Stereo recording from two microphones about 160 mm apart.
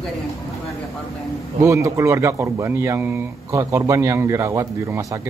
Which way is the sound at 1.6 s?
20° right (ahead or behind).